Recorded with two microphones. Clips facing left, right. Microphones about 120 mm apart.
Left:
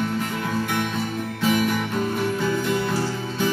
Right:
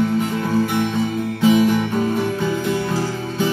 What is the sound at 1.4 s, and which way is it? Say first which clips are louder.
Music: right 7 dB; 20° right (ahead or behind).